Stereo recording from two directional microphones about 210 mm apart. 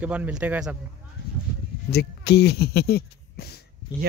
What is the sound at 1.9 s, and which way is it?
Speech, 50° left (ahead or behind).